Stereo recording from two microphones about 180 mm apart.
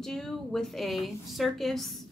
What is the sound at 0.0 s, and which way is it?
A woman's voice, 5° left (ahead or behind).